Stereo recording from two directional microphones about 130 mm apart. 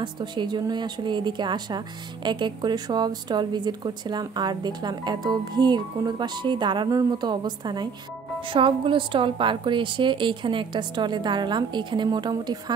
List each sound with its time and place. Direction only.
0.0 s a woman's voice: 35° right (ahead or behind)